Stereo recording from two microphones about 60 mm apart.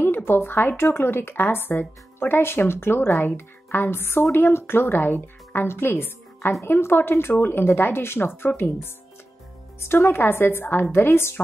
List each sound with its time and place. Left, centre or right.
0.0 s speech: left
9.8 s speech: left